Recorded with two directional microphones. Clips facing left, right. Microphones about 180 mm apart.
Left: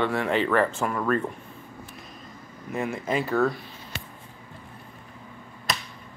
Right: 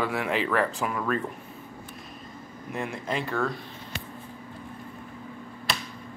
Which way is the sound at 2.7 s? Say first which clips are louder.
Left 4 dB; 5° left (ahead or behind).